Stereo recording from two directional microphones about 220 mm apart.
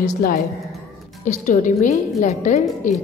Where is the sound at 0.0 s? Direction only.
40° left (ahead or behind).